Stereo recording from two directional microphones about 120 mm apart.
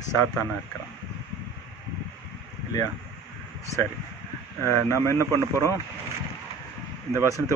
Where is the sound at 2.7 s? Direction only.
30° left (ahead or behind).